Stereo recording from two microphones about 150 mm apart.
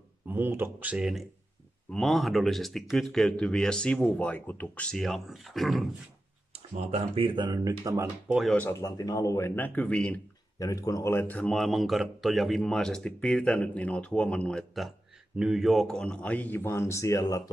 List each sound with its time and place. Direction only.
0.3 s speech: 15° right (ahead or behind)
6.7 s speech: 45° right (ahead or behind); by 8.1 s 20° right (ahead or behind)
8.3 s speech: centre (ahead or behind)
8.5 s speech: 15° left (ahead or behind)
10.6 s speech: 25° left (ahead or behind)